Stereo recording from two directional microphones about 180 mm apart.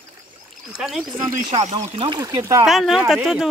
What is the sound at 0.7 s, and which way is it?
Speech, 5° right (ahead or behind).